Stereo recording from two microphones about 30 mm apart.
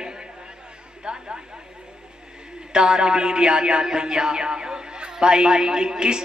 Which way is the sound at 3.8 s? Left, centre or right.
Right.